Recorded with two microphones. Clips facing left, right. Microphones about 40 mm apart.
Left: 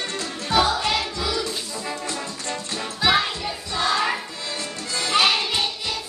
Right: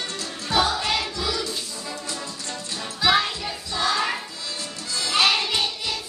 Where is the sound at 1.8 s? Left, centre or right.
Left.